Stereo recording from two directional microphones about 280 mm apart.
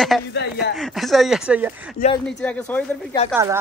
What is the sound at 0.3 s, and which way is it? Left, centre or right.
Speech, left.